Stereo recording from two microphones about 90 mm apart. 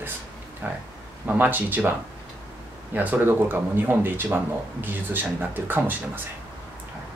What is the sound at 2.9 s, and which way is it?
Speech, 20° right (ahead or behind).